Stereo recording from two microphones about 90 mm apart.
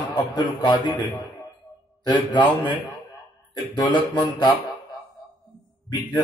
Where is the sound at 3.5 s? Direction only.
55° left (ahead or behind).